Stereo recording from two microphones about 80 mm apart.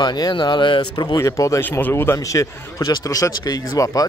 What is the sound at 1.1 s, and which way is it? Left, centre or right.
Speech, left.